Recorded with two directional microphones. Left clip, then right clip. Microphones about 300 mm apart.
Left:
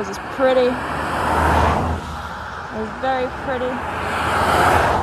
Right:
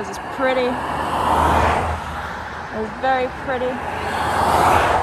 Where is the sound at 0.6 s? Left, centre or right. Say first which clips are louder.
Left 1 dB; centre.